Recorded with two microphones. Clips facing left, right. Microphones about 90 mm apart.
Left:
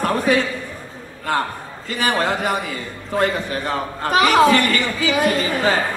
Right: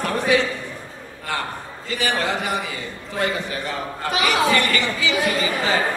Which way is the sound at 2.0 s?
45° left (ahead or behind).